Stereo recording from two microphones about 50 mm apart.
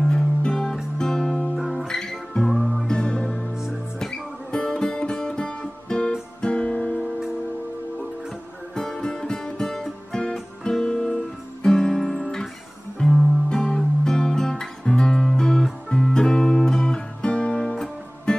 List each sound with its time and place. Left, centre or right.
0.1 s music: left
0.9 s music: centre
1.6 s music: centre
1.9 s music: centre
2.9 s music: centre
8.7 s music: centre
11.6 s guitar: centre
13.5 s music: centre
14.0 s guitar: centre
15.9 s music: centre